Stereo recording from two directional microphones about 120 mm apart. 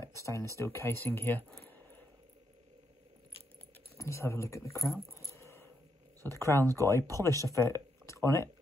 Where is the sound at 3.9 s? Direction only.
25° left (ahead or behind).